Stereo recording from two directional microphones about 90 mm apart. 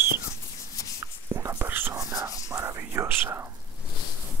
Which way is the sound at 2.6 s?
35° right (ahead or behind).